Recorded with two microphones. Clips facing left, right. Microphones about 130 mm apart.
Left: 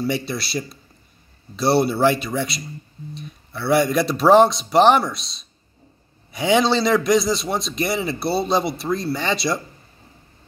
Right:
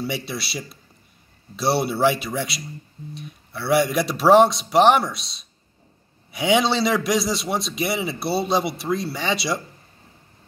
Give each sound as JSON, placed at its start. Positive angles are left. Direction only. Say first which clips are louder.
{"t": 0.0, "sound": "a man's voice", "louder": "left 4 dB", "side_deg": -5}